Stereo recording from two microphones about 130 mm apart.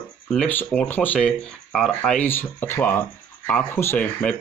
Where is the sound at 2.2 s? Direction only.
15° left (ahead or behind).